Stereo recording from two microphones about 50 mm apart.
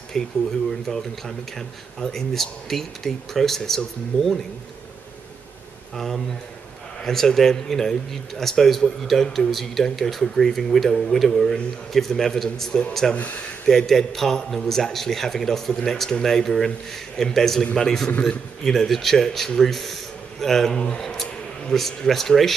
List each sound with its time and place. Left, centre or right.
0.2 s a man's voice: centre
5.9 s a man's voice: centre
13.1 s speech: left
13.7 s a man's voice: centre